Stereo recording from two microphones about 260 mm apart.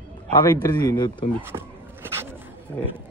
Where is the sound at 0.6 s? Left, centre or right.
Centre.